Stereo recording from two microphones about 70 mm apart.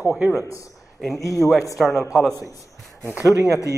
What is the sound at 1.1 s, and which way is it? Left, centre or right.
Speech, left.